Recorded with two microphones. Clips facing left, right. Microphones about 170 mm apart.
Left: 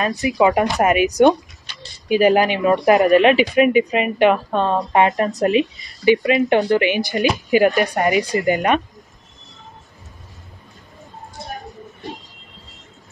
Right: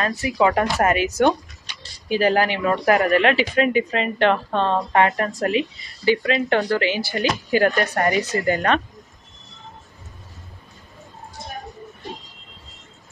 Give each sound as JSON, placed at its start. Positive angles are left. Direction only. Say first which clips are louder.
{"t": 0.0, "sound": "speech", "louder": "left 3 dB", "side_deg": 20}